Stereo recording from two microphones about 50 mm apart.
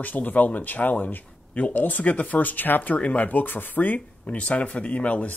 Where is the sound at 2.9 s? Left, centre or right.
Left.